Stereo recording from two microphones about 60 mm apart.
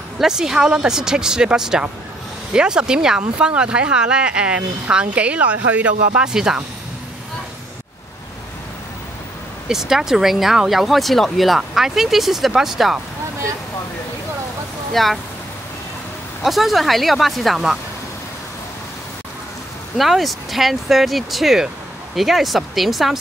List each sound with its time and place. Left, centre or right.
0.2 s speech: centre
9.7 s speech: centre
14.9 s speech: centre
16.4 s speech: centre
20.0 s speech: centre